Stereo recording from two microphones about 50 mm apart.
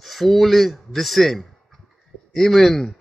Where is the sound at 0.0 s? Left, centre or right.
Centre.